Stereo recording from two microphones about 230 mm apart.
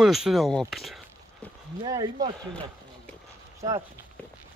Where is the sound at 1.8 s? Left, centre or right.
Centre.